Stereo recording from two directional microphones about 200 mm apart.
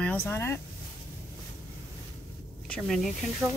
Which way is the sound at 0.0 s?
10° left (ahead or behind).